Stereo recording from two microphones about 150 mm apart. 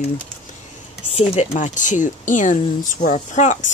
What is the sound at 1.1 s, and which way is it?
Speech, 45° left (ahead or behind).